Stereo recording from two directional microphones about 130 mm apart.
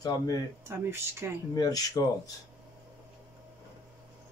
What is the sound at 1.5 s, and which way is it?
Speech, 30° left (ahead or behind).